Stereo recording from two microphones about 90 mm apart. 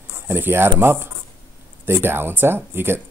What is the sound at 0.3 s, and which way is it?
Speech, 25° right (ahead or behind).